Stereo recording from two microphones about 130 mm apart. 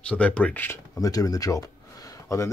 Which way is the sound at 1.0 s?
25° left (ahead or behind).